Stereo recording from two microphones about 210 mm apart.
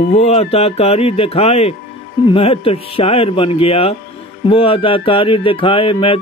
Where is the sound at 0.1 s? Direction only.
30° left (ahead or behind).